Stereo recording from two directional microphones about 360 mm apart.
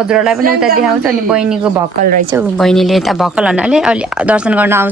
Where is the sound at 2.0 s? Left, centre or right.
Right.